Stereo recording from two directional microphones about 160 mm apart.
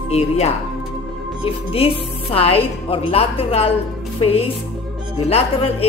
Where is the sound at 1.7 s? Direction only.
35° left (ahead or behind).